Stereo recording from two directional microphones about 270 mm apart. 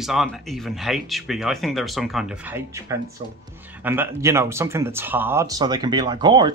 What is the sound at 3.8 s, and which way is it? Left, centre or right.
Speech, centre.